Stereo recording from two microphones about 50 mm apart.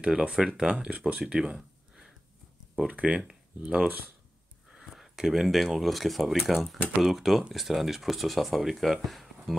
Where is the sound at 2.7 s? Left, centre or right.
Right.